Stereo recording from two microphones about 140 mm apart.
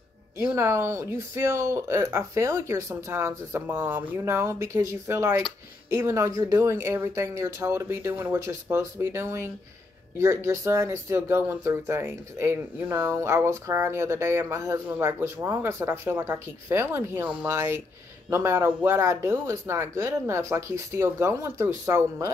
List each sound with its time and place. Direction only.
0.6 s speech: 20° right (ahead or behind)